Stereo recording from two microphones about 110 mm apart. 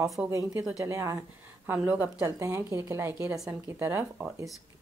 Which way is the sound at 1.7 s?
15° right (ahead or behind).